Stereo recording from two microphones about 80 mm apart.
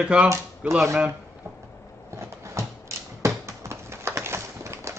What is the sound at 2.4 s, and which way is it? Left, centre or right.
Computer keyboard, right.